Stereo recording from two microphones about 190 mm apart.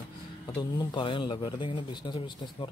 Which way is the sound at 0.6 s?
25° left (ahead or behind).